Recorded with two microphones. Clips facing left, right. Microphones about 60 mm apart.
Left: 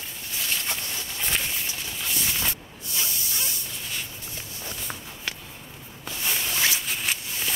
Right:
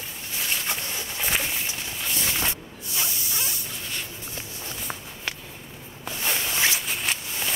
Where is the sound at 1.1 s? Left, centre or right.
Centre.